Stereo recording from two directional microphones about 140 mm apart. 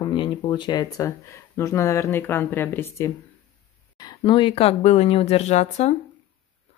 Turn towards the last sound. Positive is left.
turn(degrees=50)  # may be behind; listen again after turning